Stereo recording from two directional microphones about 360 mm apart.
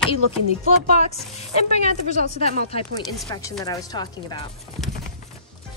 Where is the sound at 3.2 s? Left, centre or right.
Centre.